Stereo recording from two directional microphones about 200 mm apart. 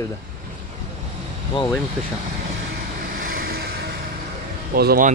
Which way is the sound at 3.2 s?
45° right (ahead or behind).